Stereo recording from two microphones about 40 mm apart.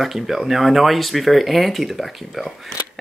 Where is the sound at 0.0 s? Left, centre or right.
Centre.